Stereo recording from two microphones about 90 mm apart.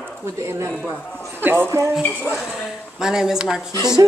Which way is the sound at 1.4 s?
20° right (ahead or behind).